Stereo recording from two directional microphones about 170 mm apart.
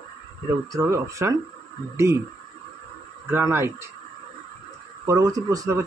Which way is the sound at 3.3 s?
15° right (ahead or behind).